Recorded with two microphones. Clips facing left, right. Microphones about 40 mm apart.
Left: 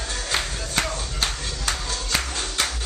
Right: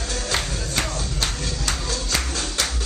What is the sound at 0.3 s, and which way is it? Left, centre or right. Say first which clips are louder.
Music: even; centre.